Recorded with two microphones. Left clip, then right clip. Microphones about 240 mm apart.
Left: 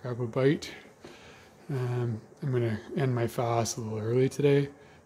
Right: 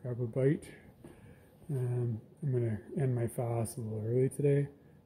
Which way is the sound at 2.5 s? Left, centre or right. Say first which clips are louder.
Left 6 dB; centre.